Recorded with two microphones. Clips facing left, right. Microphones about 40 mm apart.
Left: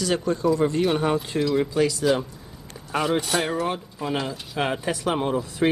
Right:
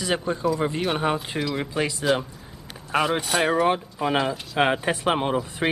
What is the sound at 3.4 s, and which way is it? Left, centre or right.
Speech, right.